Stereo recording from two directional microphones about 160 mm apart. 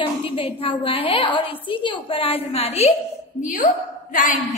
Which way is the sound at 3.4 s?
55° left (ahead or behind).